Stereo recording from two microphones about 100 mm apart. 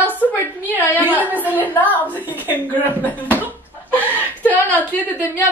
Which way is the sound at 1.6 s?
15° left (ahead or behind).